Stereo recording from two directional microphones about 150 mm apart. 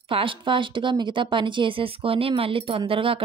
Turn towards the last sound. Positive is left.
turn(degrees=-40)  # may be behind; listen again after turning